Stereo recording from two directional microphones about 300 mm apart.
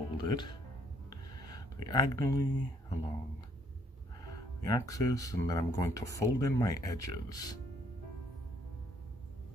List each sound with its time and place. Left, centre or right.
0.2 s speech: centre
1.1 s a sound: centre
4.2 s speech: centre